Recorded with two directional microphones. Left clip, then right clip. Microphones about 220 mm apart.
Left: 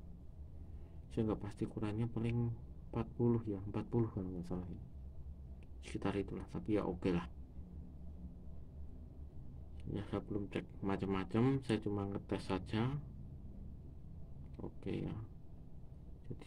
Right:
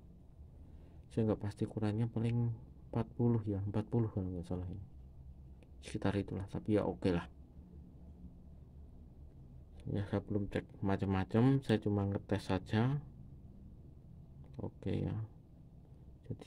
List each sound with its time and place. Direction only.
1.1 s speech: 50° right (ahead or behind)
5.9 s speech: 45° right (ahead or behind)
9.9 s speech: 45° right (ahead or behind)
14.8 s speech: 50° right (ahead or behind)
16.3 s a sound: 40° right (ahead or behind)